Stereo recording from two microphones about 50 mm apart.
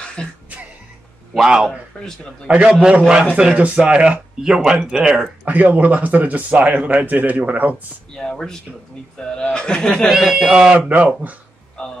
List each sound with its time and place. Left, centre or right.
0.0 s music: centre
1.5 s speech: centre
3.5 s speech: right
4.4 s speech: centre
5.4 s speech: right
8.1 s speech: centre
10.1 s speech: centre
10.9 s speech: right